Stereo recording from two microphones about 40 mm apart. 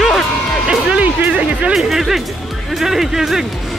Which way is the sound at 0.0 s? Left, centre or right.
Centre.